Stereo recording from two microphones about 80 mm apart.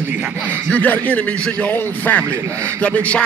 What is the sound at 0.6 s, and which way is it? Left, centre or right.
A man's voice, centre.